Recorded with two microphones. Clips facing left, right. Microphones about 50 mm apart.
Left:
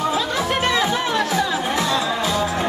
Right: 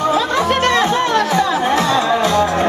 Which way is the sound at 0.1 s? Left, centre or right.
Centre.